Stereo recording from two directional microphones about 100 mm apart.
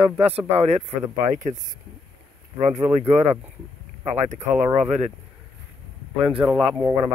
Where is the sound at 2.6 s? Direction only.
90° right.